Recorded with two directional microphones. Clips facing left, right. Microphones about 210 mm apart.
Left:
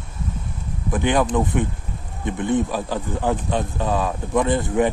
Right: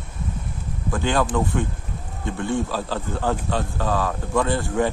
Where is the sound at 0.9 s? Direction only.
20° left (ahead or behind).